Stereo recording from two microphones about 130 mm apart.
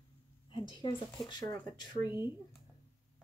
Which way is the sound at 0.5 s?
35° left (ahead or behind).